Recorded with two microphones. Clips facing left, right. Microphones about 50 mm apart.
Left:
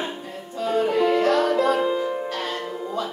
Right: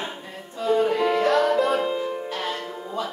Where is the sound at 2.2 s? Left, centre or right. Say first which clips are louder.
Left 1 dB; right.